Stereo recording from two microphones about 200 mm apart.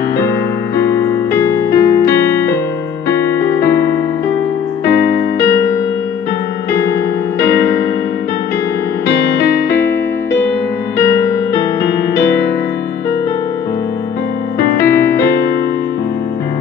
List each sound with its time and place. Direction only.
0.7 s keyboard: 15° left (ahead or behind)
3.1 s music: 15° left (ahead or behind)
4.8 s music: 55° left (ahead or behind)
14.9 s piano: 10° left (ahead or behind)